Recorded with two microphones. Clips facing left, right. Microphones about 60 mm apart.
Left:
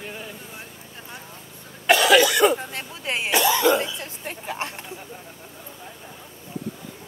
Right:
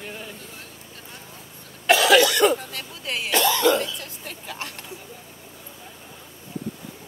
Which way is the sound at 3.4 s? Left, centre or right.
Centre.